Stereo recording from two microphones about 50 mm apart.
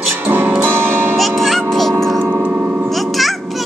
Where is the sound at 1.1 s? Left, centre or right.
Centre.